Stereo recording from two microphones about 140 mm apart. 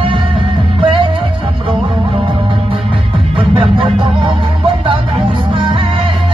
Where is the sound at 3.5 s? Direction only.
40° right (ahead or behind).